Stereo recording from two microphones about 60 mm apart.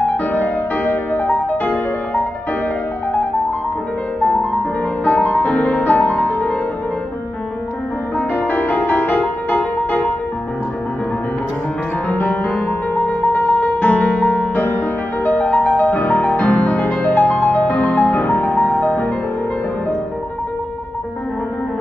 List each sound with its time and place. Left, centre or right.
0.3 s music: left
5.0 s music: left
5.4 s music: left
8.2 s music: left
12.1 s music: left
15.3 s music: centre
17.6 s music: centre